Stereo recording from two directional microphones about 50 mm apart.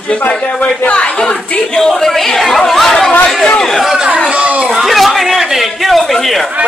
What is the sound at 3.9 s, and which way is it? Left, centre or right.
Speech, centre.